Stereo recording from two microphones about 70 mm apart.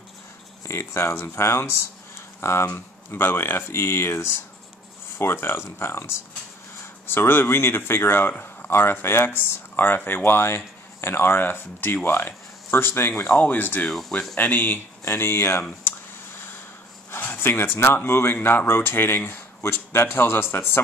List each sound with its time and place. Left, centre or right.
0.7 s speech: left
13.8 s speech: centre
14.3 s speech: left
17.1 s speech: left